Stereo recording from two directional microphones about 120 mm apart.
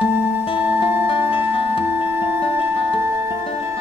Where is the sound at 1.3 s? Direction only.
50° left (ahead or behind).